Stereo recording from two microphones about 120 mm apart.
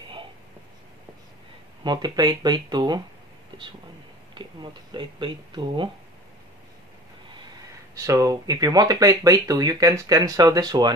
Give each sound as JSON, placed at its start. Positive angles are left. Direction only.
{"t": 1.9, "sound": "speech", "side_deg": -35}
{"t": 4.9, "sound": "speech", "side_deg": -40}
{"t": 7.9, "sound": "speech", "side_deg": -25}